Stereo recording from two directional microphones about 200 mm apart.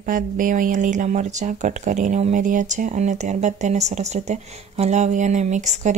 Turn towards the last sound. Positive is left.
turn(degrees=-35)  # may be behind; listen again after turning